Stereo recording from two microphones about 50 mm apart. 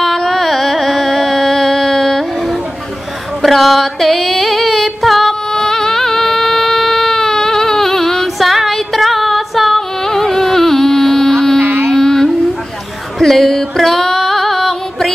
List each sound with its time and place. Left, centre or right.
0.0 s carnatic music: centre
3.4 s music: centre
11.6 s a sound: right
11.9 s music: centre